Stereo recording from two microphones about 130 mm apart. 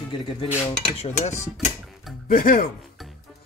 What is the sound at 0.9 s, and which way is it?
Chopping, 55° left (ahead or behind).